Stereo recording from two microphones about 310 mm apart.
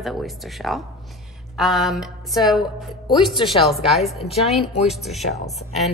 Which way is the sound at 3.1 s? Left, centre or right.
Centre.